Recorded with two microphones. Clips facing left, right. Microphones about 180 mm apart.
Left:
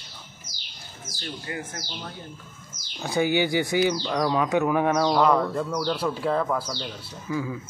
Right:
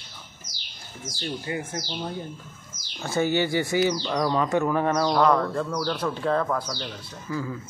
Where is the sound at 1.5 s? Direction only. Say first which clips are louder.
Right 4 dB; 25° right (ahead or behind).